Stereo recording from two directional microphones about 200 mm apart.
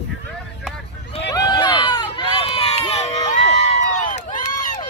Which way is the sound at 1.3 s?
20° left (ahead or behind).